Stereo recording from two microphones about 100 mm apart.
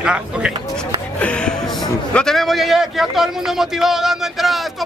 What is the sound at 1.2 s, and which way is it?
Music, 10° left (ahead or behind).